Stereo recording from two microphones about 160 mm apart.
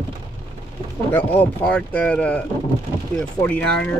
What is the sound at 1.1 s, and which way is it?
Speech, 10° left (ahead or behind).